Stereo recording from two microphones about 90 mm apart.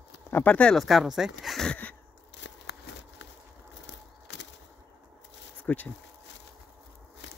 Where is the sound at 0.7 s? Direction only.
Centre (ahead or behind).